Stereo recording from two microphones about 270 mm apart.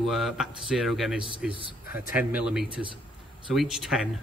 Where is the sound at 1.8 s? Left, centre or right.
Left.